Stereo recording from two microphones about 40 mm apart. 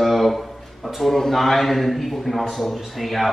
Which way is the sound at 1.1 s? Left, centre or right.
Centre.